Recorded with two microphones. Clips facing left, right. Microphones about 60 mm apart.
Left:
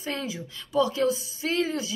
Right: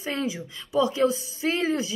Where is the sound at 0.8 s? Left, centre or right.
Right.